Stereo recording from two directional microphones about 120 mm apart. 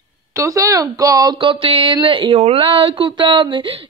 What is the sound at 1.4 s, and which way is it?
Speech, 45° right (ahead or behind).